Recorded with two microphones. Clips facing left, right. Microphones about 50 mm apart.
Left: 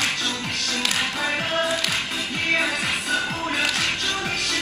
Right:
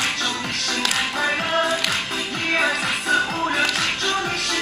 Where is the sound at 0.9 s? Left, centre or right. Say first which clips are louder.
Right 3 dB; centre.